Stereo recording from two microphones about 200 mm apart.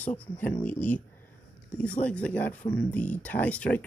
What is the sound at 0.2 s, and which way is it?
Speech, 5° left (ahead or behind).